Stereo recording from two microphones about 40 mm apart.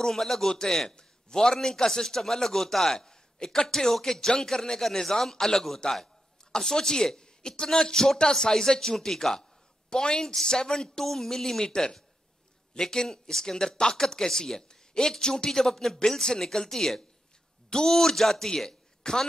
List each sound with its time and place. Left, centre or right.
0.0 s a man's voice: centre